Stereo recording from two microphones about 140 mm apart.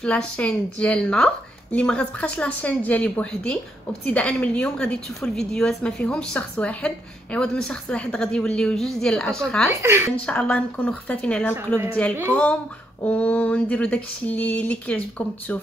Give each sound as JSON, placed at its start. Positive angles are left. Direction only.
{"t": 0.0, "sound": "a woman's voice", "side_deg": 5}
{"t": 9.8, "sound": "a woman's voice", "side_deg": -20}
{"t": 10.1, "sound": "a woman's voice", "side_deg": 10}
{"t": 11.5, "sound": "a woman's voice", "side_deg": -15}
{"t": 13.0, "sound": "a woman's voice", "side_deg": 10}